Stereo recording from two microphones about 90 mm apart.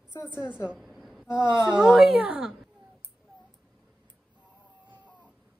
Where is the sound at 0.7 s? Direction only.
Centre (ahead or behind).